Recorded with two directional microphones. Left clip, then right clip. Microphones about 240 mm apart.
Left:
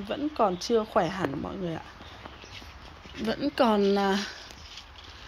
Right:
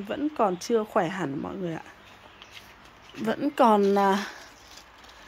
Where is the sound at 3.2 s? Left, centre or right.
Centre.